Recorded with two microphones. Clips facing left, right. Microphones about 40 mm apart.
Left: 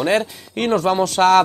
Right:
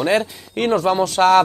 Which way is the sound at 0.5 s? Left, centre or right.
Left.